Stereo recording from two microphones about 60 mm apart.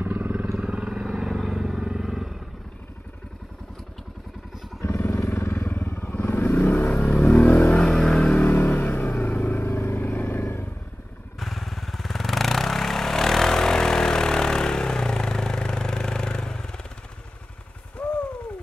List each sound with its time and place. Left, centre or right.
0.0 s vehicle: right
0.5 s vehicle: centre
1.4 s motorcycle: centre
4.7 s motorcycle: left
7.3 s vehicle: left
8.5 s vehicle: left
11.3 s vehicle: centre
18.0 s a sound: centre